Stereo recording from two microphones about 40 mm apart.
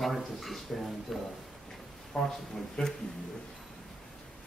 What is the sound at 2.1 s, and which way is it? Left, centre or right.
Speech, left.